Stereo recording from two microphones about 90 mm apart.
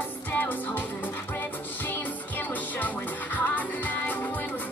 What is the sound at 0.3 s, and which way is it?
Music, 20° left (ahead or behind).